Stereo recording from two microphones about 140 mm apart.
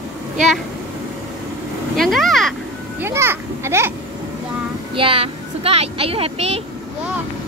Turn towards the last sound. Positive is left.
turn(degrees=-45)  # may be behind; listen again after turning